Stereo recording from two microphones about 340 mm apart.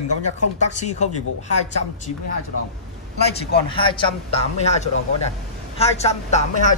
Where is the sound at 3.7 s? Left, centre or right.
Centre.